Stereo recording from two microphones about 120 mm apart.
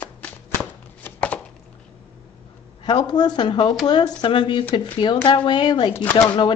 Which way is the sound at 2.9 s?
35° left (ahead or behind).